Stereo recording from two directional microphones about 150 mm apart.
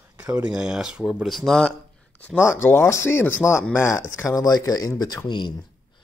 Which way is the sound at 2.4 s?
20° left (ahead or behind).